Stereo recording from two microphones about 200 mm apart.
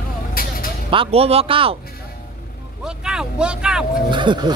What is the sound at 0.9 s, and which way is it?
Speech, 30° right (ahead or behind).